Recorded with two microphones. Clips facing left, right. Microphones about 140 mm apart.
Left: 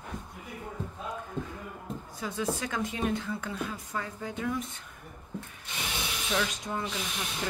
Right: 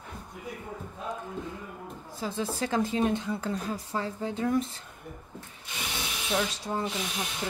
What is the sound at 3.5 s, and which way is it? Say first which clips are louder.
Speech: right 4 dB; 35° right (ahead or behind).